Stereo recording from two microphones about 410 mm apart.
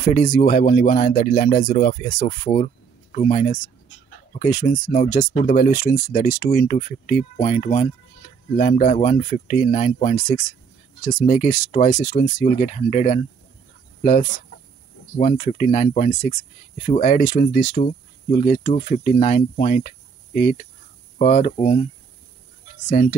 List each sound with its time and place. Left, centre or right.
0.1 s speech: centre
15.1 s speech: centre
22.8 s speech: centre